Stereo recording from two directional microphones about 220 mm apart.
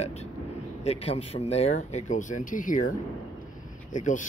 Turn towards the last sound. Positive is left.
turn(degrees=35)  # may be behind; listen again after turning